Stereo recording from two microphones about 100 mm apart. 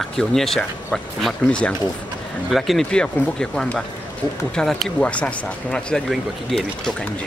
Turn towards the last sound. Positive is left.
turn(degrees=0)  # may be behind; listen again after turning